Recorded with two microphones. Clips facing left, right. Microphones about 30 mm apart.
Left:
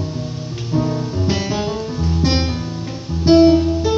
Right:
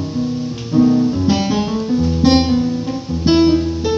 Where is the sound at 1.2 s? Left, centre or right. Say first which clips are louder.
Right 5 dB; right.